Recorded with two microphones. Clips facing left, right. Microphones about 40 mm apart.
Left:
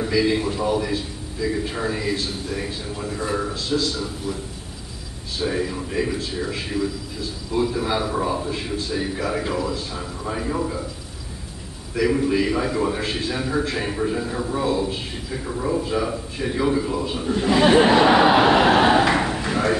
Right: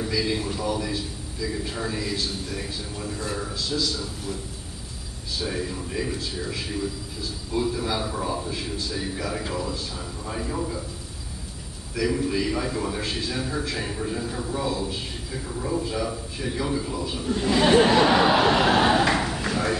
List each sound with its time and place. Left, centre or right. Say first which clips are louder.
0.0 s a man's voice: left 6 dB; left
5.4 s a man's voice: left 6 dB; left
11.9 s a man's voice: left 5 dB; left